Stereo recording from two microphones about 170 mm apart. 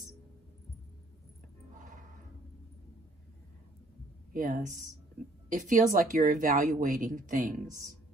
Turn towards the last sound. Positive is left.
turn(degrees=-50)  # may be behind; listen again after turning